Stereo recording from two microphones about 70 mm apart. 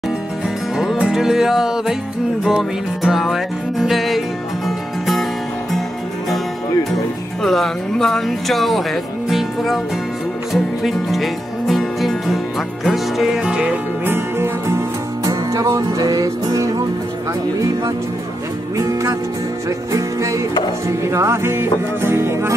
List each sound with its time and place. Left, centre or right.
0.7 s music: centre
7.4 s speech: centre
10.5 s music: centre
14.0 s music: right
15.2 s music: right
16.0 s music: right
18.8 s music: right